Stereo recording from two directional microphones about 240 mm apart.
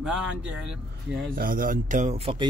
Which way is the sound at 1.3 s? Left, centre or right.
Right.